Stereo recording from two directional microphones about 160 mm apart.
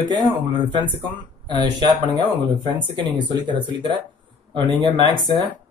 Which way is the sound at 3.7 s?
30° right (ahead or behind).